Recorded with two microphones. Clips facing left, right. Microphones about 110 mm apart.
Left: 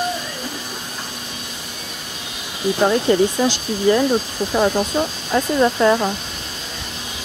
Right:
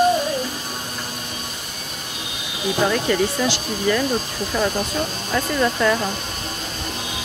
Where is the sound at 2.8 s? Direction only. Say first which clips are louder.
Left 5 dB; 25° left (ahead or behind).